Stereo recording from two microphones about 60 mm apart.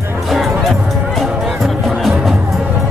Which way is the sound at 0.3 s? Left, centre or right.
Centre.